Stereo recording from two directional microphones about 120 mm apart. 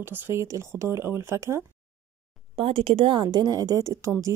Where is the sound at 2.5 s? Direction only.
55° right (ahead or behind).